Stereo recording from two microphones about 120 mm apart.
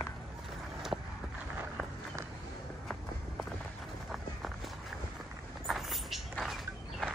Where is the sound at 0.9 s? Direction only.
5° right (ahead or behind).